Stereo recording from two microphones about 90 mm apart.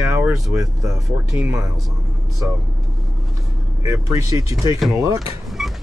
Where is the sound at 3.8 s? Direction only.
35° right (ahead or behind).